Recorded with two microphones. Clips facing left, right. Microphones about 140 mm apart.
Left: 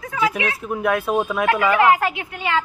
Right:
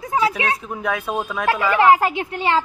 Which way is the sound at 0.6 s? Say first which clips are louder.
Left 4 dB; 5° left (ahead or behind).